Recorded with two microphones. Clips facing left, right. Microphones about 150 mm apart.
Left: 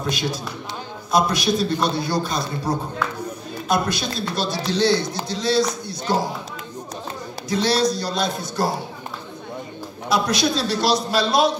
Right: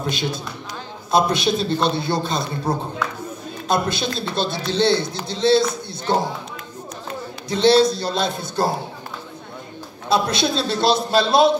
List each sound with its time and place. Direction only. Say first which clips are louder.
0.1 s a man's voice: even; 25° right (ahead or behind)
7.4 s a man's voice: right 5 dB; 25° right (ahead or behind)
10.0 s a man's voice: right 1 dB; 25° right (ahead or behind)